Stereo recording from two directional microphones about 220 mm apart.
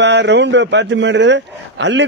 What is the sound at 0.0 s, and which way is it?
A man's voice, 55° right (ahead or behind).